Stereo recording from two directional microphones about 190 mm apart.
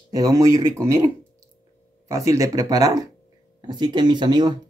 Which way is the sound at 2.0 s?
15° right (ahead or behind).